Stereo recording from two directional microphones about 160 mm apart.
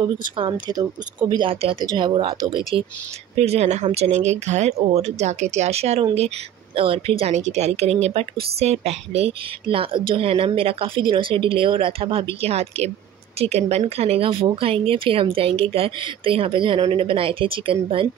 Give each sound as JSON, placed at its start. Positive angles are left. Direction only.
{"t": 0.4, "sound": "speech", "side_deg": -25}
{"t": 3.3, "sound": "speech", "side_deg": -40}